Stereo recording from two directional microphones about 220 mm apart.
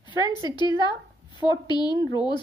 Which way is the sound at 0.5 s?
20° left (ahead or behind).